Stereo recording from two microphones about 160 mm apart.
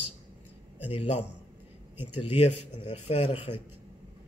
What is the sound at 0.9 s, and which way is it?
Speech, 40° left (ahead or behind).